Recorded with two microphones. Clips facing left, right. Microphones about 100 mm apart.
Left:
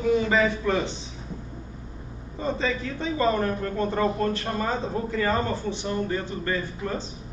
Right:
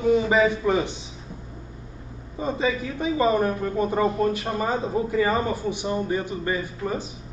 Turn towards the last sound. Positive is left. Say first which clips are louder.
# right 2 dB
turn(degrees=-15)  # may be behind; listen again after turning